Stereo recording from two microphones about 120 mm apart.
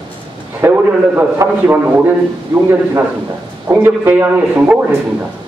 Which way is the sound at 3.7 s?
15° right (ahead or behind).